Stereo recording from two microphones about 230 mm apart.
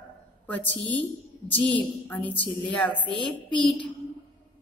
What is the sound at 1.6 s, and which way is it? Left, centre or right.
Speech, centre.